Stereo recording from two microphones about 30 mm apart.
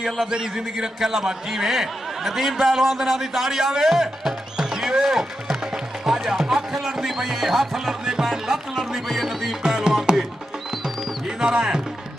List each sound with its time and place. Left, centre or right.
0.3 s speech: centre
1.7 s speech: centre
4.6 s music: centre
6.5 s speech: centre
9.1 s music: centre
10.1 s music: right
11.2 s music: right